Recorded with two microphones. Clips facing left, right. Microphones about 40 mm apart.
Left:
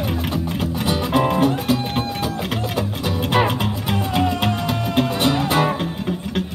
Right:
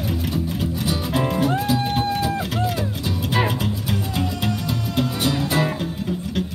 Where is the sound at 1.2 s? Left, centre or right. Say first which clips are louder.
Left 4 dB; left.